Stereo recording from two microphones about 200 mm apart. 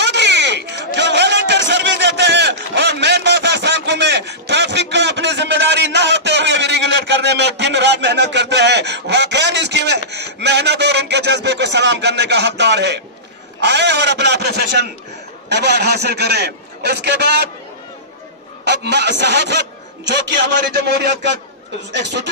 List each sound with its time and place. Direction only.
0.0 s a sound: 60° right (ahead or behind)
13.6 s a man's voice: 60° right (ahead or behind)
18.6 s a man's voice: 60° right (ahead or behind)